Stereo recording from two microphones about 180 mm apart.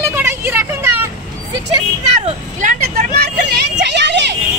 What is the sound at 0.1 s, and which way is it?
Vehicle, 10° right (ahead or behind).